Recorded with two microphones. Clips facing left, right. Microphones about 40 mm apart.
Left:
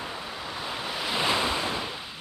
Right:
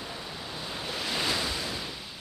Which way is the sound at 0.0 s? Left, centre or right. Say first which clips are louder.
Left 4 dB; left.